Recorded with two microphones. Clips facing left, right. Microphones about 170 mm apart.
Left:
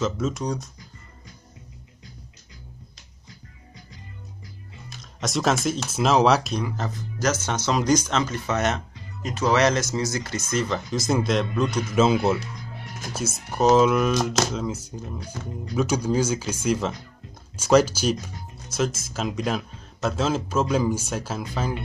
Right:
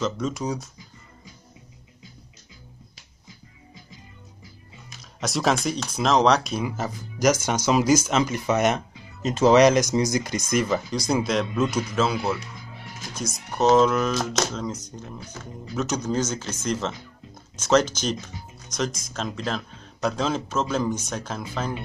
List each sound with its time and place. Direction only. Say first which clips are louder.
0.0 s speech: left 1 dB; centre (ahead or behind)
5.2 s speech: even; centre (ahead or behind)
6.6 s speech: right 1 dB; 10° right (ahead or behind)
9.2 s speech: right 5 dB; 25° right (ahead or behind)
9.6 s speech: right 5 dB; 15° right (ahead or behind)
10.9 s speech: left 1 dB; centre (ahead or behind)
11.9 s speech: left 4 dB; 20° left (ahead or behind)
12.5 s speech: left 2 dB; centre (ahead or behind)